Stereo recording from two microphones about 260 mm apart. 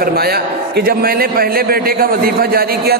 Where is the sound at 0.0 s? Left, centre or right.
Right.